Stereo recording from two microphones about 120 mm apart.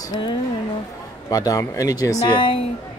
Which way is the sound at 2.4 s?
50° left (ahead or behind).